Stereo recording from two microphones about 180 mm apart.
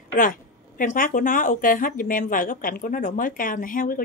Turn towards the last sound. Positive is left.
turn(degrees=50)  # may be behind; listen again after turning